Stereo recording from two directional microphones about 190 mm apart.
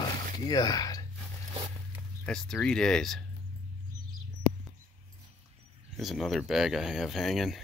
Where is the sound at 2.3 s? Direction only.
5° left (ahead or behind).